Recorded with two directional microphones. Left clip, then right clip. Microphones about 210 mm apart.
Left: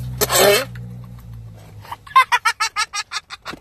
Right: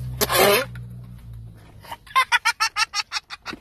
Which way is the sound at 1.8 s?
Centre (ahead or behind).